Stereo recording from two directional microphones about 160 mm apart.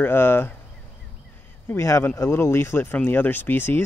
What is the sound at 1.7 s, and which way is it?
Speech, 15° left (ahead or behind).